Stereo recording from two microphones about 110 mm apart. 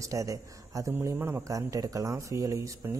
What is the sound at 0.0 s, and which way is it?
Speech, 30° right (ahead or behind).